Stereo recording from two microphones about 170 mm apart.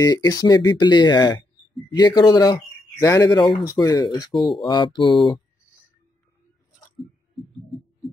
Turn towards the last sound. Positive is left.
turn(degrees=0)  # may be behind; listen again after turning